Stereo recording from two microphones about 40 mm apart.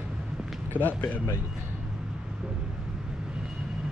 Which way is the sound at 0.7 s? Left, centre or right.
Left.